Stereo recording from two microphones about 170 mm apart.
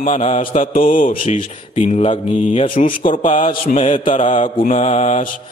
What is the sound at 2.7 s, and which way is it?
Speech, 50° left (ahead or behind).